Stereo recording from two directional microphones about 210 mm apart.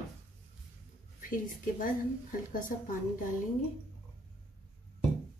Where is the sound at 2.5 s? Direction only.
40° left (ahead or behind).